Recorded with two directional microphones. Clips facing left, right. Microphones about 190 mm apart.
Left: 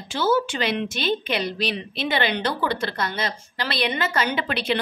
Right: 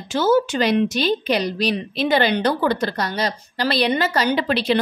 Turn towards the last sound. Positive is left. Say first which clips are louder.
# right 6 dB
turn(degrees=-35)  # may be behind; listen again after turning